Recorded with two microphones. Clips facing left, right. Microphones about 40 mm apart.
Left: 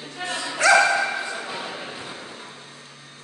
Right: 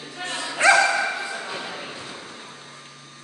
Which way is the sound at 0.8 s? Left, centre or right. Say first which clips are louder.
Left 1 dB; centre.